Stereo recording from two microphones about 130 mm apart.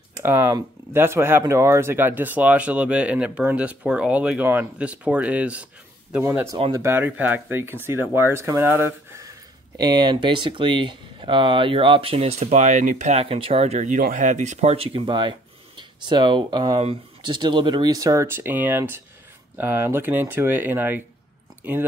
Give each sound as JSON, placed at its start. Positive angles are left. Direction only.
{"t": 0.2, "sound": "speech", "side_deg": -20}
{"t": 6.2, "sound": "speech", "side_deg": -25}
{"t": 9.8, "sound": "speech", "side_deg": -35}